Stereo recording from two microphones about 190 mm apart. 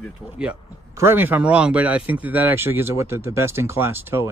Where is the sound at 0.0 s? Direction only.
5° right (ahead or behind).